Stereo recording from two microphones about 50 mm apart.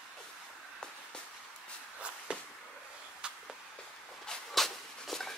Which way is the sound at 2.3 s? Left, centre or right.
Centre.